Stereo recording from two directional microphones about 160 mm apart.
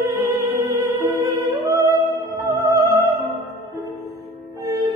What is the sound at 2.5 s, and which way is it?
Music, 20° right (ahead or behind).